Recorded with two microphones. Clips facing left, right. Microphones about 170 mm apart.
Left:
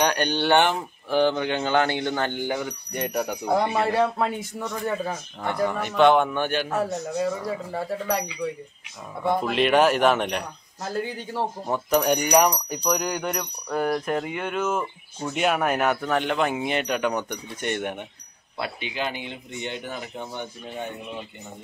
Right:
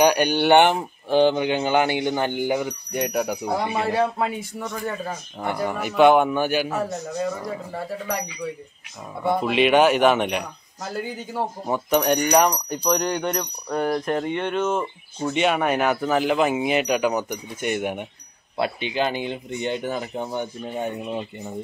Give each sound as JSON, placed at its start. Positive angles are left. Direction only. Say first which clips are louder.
{"t": 0.0, "sound": "speech", "louder": "right 5 dB", "side_deg": -10}
{"t": 5.0, "sound": "speech", "louder": "right 1 dB", "side_deg": -10}
{"t": 6.8, "sound": "speech", "louder": "left 1 dB", "side_deg": 5}
{"t": 9.2, "sound": "speech", "louder": "right 2 dB", "side_deg": -5}
{"t": 18.6, "sound": "speech", "louder": "right 6 dB", "side_deg": -30}